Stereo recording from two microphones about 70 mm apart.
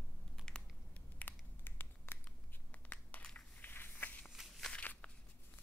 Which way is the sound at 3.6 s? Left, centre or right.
Left.